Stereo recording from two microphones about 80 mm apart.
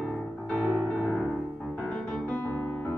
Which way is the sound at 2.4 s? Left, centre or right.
Left.